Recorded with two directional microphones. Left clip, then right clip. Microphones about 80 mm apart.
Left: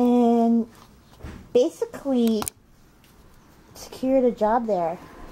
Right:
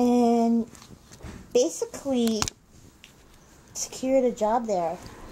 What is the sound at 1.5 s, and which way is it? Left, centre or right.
Speech, centre.